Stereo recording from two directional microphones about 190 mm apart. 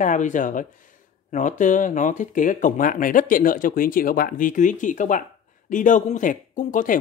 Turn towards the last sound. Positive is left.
turn(degrees=45)  # may be behind; listen again after turning